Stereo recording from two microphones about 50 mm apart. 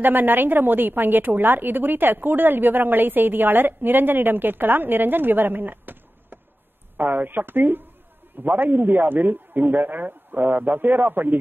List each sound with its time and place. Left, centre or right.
0.0 s a woman's voice: right